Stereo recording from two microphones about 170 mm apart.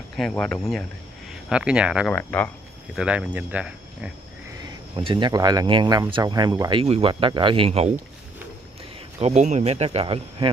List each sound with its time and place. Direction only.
0.1 s speech: 5° left (ahead or behind)
1.5 s speech: 5° right (ahead or behind)
2.0 s speech: 10° left (ahead or behind)
3.0 s speech: 5° right (ahead or behind)
4.9 s speech: 25° right (ahead or behind)
9.2 s speech: 40° right (ahead or behind)